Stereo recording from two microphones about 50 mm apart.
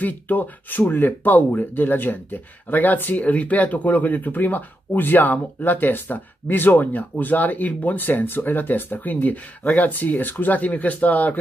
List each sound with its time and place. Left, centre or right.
0.0 s speech: left